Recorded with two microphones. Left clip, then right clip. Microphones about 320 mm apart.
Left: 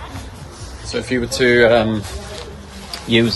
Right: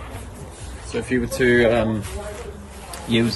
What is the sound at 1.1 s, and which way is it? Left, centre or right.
Speech, centre.